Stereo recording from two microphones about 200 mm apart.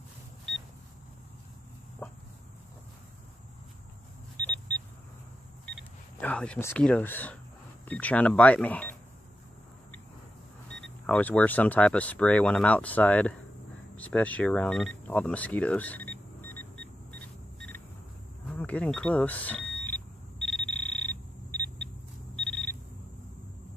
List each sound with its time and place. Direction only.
2.0 s insect: 5° left (ahead or behind)
4.4 s vehicle: 5° left (ahead or behind)
6.2 s speech: 5° left (ahead or behind)
11.1 s speech: 5° left (ahead or behind)
17.6 s a sound: 10° left (ahead or behind)
18.5 s vehicle: 5° left (ahead or behind)
22.3 s a sound: 5° left (ahead or behind)